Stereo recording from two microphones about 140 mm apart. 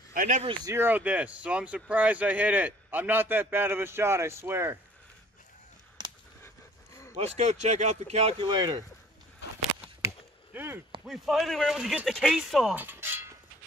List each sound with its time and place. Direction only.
0.1 s speech: 70° right (ahead or behind)
0.7 s speech: 15° right (ahead or behind)
7.2 s speech: 55° right (ahead or behind); by 8.8 s 30° right (ahead or behind)
10.0 s chop: 15° right (ahead or behind)
11.1 s speech: centre (ahead or behind)
12.7 s a sound: 15° right (ahead or behind)